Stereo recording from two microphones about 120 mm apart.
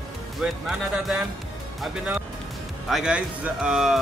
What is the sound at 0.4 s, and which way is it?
Speech, 5° right (ahead or behind).